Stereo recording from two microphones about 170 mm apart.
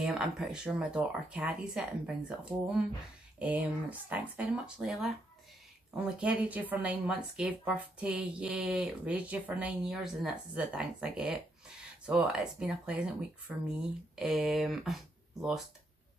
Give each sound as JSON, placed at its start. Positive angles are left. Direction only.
{"t": 0.0, "sound": "speech", "side_deg": -5}